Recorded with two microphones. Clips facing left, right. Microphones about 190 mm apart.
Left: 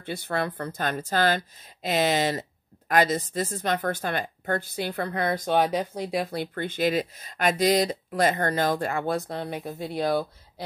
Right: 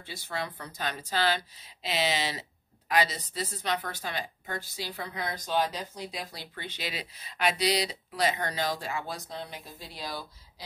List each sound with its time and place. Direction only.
0.0 s a woman's voice: 55° left (ahead or behind)